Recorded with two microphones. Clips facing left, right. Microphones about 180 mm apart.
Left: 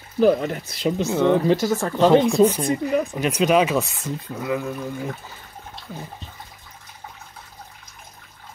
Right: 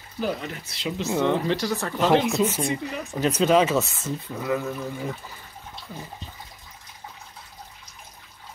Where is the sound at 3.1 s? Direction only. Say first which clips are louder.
Right 2 dB; 15° left (ahead or behind).